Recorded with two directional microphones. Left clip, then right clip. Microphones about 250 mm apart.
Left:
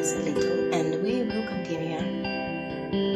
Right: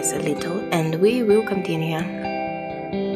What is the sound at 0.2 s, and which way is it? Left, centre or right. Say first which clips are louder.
Speech: even; right.